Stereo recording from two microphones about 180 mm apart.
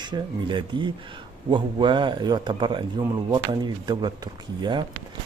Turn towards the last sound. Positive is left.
turn(degrees=-25)  # may be behind; listen again after turning